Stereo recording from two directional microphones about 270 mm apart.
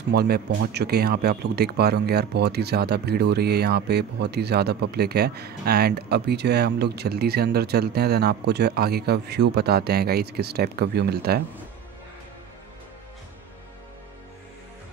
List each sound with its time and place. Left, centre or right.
0.1 s speech: right